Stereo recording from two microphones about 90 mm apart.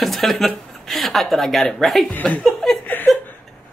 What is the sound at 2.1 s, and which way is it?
Speech, 15° left (ahead or behind).